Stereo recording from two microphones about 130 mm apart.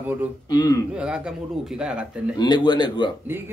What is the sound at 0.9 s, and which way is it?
A man's voice, 5° right (ahead or behind).